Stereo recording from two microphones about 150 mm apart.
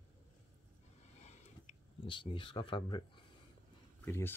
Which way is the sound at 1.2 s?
50° left (ahead or behind).